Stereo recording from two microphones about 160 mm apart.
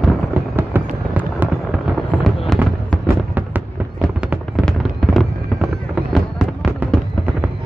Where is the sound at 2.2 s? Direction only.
Centre (ahead or behind).